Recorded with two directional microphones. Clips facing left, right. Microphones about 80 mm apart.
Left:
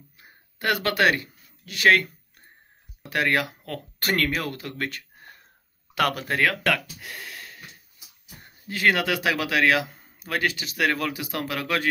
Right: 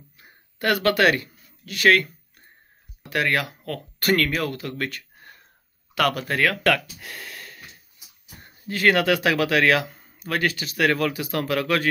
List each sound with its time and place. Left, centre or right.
0.6 s speech: centre
3.1 s speech: left
8.6 s speech: centre